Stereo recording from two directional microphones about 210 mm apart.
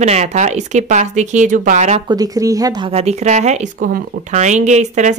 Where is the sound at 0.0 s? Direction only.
30° right (ahead or behind).